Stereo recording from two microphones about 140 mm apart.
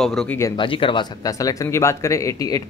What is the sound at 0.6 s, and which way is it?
Speech, 35° left (ahead or behind).